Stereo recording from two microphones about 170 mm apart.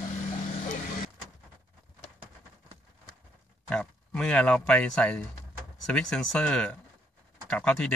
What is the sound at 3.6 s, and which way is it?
Speech, 5° left (ahead or behind).